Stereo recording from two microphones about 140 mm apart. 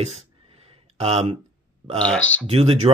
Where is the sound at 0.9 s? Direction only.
45° right (ahead or behind).